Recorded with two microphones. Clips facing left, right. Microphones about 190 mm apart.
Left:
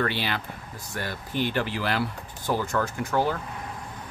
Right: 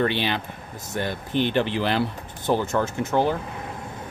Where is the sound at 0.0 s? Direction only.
20° right (ahead or behind).